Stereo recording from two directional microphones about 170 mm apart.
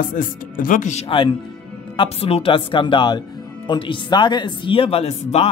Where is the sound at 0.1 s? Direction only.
50° left (ahead or behind).